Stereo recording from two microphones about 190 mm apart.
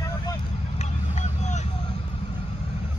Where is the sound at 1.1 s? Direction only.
40° left (ahead or behind).